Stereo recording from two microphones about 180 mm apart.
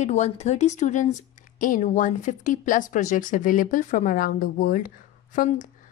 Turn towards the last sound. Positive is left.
turn(degrees=50)  # may be behind; listen again after turning